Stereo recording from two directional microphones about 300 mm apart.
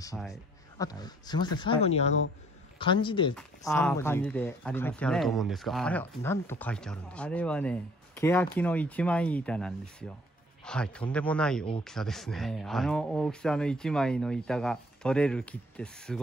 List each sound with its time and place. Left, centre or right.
0.3 s speech: centre